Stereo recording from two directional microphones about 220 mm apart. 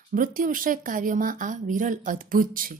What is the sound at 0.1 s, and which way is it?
Speech, 40° right (ahead or behind).